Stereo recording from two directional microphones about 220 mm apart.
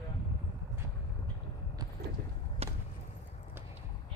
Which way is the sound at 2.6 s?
25° right (ahead or behind).